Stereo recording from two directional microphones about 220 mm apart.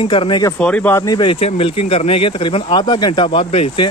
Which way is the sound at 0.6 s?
5° left (ahead or behind).